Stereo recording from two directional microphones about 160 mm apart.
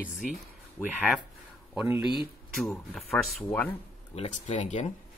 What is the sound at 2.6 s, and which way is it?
Speech, 5° left (ahead or behind).